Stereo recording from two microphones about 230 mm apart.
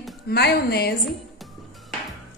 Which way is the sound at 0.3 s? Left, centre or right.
Left.